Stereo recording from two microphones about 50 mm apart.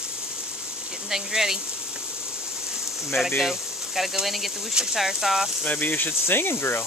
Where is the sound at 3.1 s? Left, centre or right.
Centre.